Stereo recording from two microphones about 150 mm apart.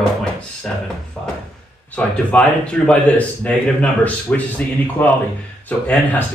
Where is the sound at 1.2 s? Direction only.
5° left (ahead or behind).